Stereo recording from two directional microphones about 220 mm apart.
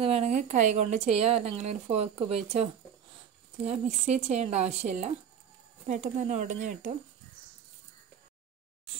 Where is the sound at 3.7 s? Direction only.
30° right (ahead or behind).